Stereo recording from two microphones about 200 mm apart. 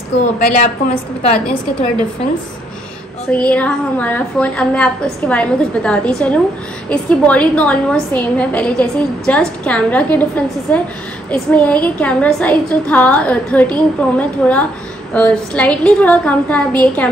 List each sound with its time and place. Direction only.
0.2 s a woman's voice: 40° left (ahead or behind)
3.3 s a woman's voice: 5° left (ahead or behind)